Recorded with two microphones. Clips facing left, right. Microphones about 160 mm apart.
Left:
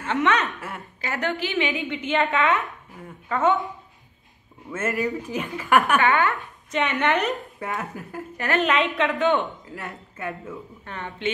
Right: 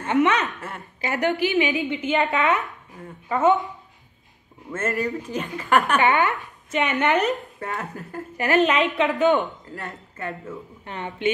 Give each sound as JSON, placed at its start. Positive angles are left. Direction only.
{"t": 0.0, "sound": "a woman's voice", "side_deg": -15}
{"t": 0.5, "sound": "speech", "side_deg": 10}
{"t": 1.0, "sound": "a woman's voice", "side_deg": -15}
{"t": 4.7, "sound": "speech", "side_deg": 10}
{"t": 5.9, "sound": "speech", "side_deg": -20}
{"t": 6.7, "sound": "a woman's voice", "side_deg": -5}
{"t": 7.6, "sound": "speech", "side_deg": 10}
{"t": 8.5, "sound": "a woman's voice", "side_deg": 0}
{"t": 9.8, "sound": "speech", "side_deg": 10}
{"t": 10.9, "sound": "speech", "side_deg": -20}